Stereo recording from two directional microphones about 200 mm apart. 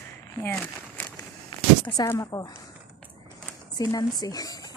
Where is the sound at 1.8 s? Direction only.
25° left (ahead or behind).